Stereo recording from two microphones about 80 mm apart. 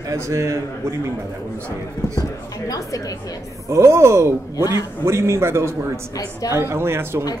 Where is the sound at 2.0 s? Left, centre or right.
Left.